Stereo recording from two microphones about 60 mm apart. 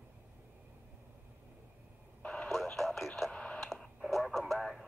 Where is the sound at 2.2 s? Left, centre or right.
Centre.